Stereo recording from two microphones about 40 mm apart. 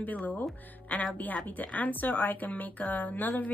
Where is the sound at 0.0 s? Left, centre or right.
Left.